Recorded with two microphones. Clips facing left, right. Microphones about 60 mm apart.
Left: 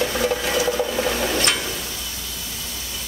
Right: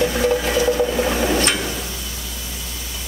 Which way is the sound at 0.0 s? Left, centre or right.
Centre.